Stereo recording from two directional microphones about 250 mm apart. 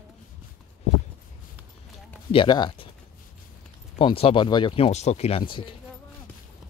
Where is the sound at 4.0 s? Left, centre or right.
Left.